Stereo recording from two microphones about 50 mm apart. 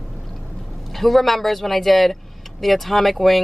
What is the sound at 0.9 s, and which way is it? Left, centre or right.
Speech, centre.